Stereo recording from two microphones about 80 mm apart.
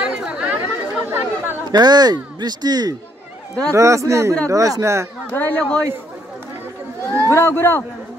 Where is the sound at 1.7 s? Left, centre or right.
Right.